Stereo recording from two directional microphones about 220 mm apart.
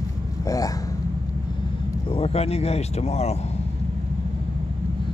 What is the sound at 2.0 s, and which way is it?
Speech, 25° left (ahead or behind).